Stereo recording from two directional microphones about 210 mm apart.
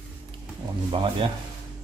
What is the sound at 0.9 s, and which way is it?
Speech, 25° right (ahead or behind).